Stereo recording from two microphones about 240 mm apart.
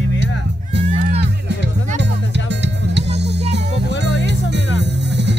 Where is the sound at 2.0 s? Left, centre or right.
Right.